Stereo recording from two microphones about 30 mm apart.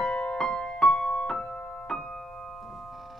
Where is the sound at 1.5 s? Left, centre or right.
Left.